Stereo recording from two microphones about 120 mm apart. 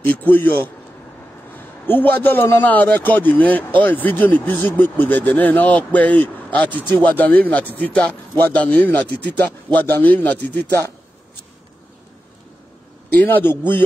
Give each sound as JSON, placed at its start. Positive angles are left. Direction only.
{"t": 0.0, "sound": "a man's voice", "side_deg": 15}
{"t": 1.9, "sound": "a man's voice", "side_deg": 15}
{"t": 13.1, "sound": "a man's voice", "side_deg": 15}